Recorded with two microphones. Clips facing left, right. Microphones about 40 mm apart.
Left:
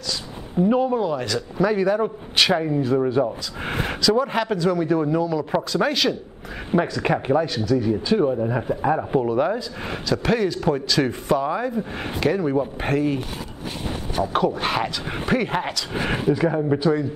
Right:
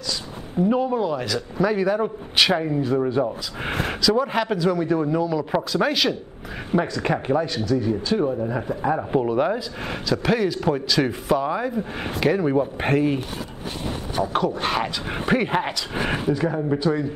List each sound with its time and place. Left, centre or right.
0.7 s a man's voice: centre
6.7 s a man's voice: centre
9.1 s a man's voice: centre
14.1 s a man's voice: centre
16.3 s a man's voice: centre